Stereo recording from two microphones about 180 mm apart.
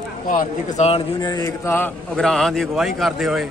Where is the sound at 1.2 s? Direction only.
20° left (ahead or behind).